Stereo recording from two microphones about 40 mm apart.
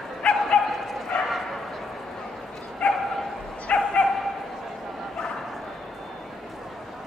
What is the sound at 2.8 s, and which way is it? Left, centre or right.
Bow-wow, centre.